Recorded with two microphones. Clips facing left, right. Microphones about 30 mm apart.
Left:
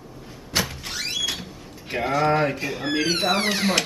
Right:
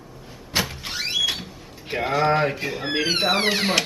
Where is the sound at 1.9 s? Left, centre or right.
Centre.